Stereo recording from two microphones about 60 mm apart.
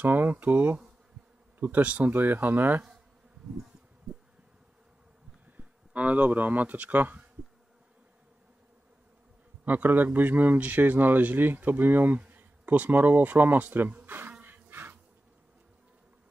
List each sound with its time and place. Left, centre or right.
0.0 s a man's voice: right
5.6 s speech: right
9.7 s a man's voice: right
14.4 s a sound: right